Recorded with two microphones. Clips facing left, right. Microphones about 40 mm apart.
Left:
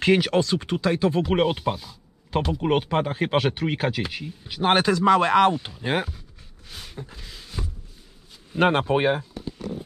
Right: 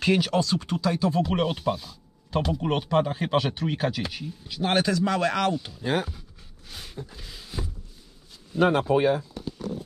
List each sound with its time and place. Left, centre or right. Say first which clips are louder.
0.0 s speech: left 3 dB; left
2.3 s speech: left 1 dB; centre
2.6 s speech: left 2 dB; left
4.5 s speech: left 4 dB; left
6.7 s a sound: left 1 dB; centre
8.5 s speech: left 1 dB; left